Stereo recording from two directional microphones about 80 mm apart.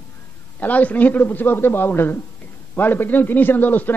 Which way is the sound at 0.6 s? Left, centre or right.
Centre.